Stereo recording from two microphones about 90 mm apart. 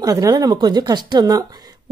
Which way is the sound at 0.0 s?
40° right (ahead or behind).